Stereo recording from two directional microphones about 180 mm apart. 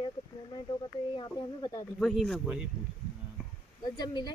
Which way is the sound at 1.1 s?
25° left (ahead or behind).